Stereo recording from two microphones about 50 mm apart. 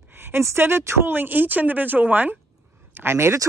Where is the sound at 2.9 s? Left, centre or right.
Right.